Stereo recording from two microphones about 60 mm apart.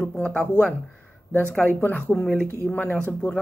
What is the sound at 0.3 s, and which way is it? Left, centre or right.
Speech, centre.